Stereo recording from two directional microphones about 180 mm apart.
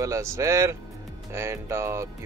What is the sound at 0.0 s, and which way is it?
Speech, 15° right (ahead or behind).